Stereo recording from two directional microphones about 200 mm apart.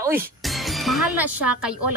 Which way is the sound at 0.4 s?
Centre (ahead or behind).